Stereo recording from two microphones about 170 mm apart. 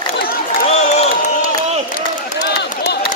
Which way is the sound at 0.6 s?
40° left (ahead or behind).